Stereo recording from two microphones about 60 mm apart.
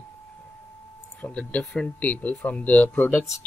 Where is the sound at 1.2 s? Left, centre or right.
Left.